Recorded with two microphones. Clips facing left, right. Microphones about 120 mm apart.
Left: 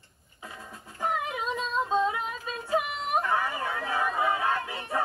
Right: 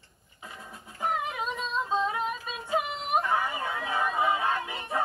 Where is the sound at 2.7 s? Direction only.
15° right (ahead or behind).